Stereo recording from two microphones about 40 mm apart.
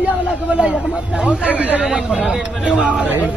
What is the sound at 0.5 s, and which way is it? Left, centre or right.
Speech, centre.